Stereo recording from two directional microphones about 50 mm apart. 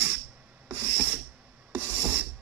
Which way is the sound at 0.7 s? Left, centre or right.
Right.